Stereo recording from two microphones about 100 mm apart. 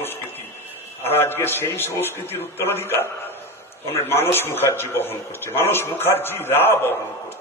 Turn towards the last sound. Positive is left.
turn(degrees=25)  # may be behind; listen again after turning